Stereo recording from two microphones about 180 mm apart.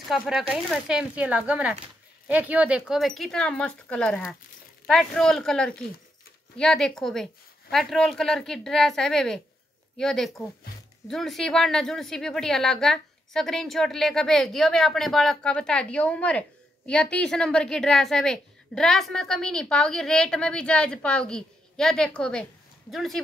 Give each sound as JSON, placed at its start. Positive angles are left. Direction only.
{"t": 0.1, "sound": "a woman's voice", "side_deg": 0}